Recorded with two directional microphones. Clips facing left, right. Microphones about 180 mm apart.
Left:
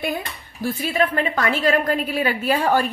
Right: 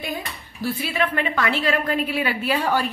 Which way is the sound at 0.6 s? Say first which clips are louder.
Left 3 dB; 45° left (ahead or behind).